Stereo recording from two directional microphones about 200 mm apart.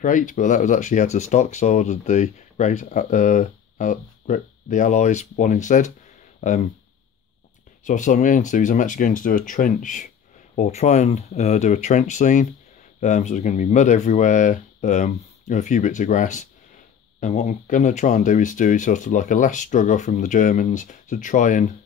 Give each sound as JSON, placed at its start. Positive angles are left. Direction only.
{"t": 0.0, "sound": "speech", "side_deg": 40}
{"t": 7.8, "sound": "speech", "side_deg": 40}